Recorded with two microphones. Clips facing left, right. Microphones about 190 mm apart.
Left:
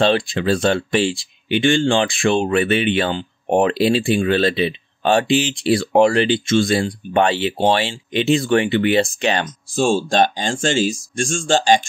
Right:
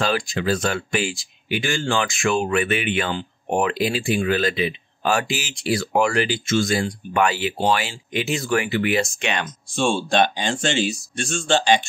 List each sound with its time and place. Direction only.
0.0 s speech: 30° left (ahead or behind)